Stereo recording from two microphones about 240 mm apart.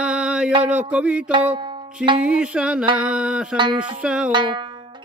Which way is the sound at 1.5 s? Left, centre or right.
Centre.